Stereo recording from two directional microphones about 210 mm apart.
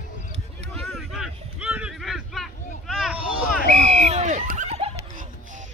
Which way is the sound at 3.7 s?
35° right (ahead or behind).